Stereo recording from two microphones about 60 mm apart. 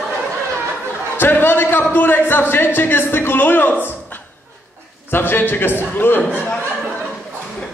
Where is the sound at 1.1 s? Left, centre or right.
Left.